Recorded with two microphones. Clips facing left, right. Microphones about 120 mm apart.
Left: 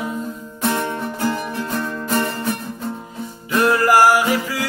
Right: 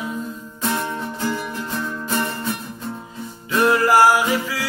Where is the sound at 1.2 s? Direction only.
60° left (ahead or behind).